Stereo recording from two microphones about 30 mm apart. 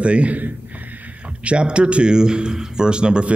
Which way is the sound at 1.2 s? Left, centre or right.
Right.